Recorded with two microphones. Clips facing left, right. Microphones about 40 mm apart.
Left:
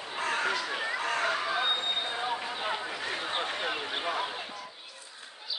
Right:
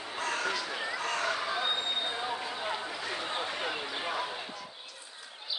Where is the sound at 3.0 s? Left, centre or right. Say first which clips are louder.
Left 2 dB; left.